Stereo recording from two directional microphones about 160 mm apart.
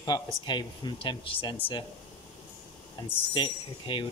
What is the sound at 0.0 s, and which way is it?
Speech, 25° left (ahead or behind).